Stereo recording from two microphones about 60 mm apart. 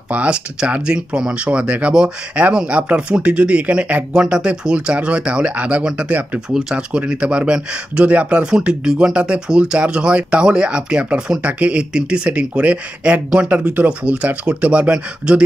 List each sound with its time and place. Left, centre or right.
0.1 s speech: centre